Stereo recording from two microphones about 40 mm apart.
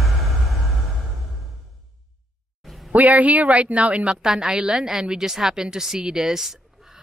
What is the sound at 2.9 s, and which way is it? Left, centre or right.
Speech, right.